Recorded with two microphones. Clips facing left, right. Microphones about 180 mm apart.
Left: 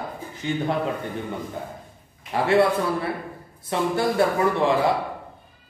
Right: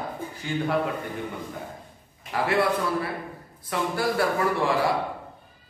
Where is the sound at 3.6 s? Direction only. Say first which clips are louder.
Left 3 dB; 25° left (ahead or behind).